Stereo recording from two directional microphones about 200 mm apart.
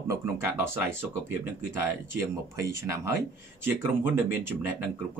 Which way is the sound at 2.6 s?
15° right (ahead or behind).